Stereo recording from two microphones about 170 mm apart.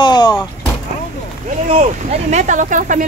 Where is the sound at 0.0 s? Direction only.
25° left (ahead or behind).